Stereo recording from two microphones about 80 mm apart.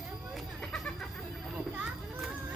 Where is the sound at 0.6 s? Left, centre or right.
Centre.